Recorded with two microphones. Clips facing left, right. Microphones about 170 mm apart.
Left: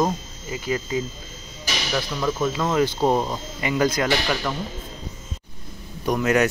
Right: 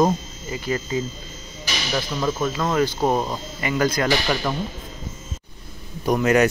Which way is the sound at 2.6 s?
10° left (ahead or behind).